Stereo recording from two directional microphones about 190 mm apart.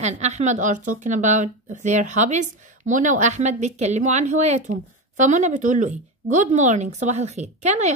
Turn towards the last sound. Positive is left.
turn(degrees=-35)  # may be behind; listen again after turning